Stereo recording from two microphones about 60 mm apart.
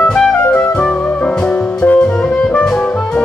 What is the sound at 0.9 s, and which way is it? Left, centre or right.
Music, left.